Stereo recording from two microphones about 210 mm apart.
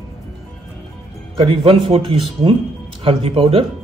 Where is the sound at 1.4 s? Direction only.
25° right (ahead or behind).